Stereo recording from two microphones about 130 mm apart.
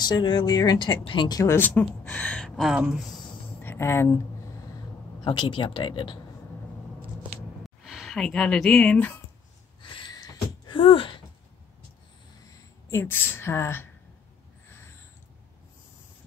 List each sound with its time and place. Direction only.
0.0 s speech: 35° left (ahead or behind)
1.4 s a woman's voice: 15° left (ahead or behind); by 3.1 s 5° right (ahead or behind)
3.6 s speech: 20° left (ahead or behind)
5.2 s speech: 35° left (ahead or behind)
7.8 s speech: 5° right (ahead or behind)
9.8 s a sound: 40° left (ahead or behind)
12.9 s a woman's voice: 15° left (ahead or behind)